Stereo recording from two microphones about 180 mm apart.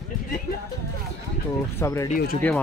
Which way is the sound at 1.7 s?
15° left (ahead or behind).